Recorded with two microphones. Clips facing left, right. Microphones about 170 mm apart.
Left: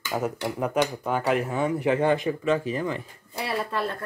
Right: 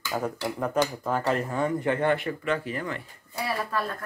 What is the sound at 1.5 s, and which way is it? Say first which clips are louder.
Speech: left 2 dB; 15° left (ahead or behind).